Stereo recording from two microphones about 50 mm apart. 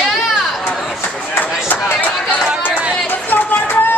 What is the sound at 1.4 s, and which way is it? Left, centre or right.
Chop, left.